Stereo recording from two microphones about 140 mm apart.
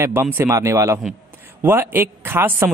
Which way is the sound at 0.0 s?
20° right (ahead or behind).